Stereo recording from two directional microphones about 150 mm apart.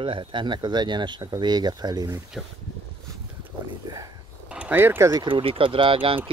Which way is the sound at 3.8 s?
25° right (ahead or behind).